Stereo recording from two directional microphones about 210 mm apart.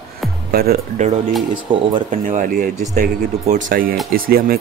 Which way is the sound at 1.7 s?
25° right (ahead or behind).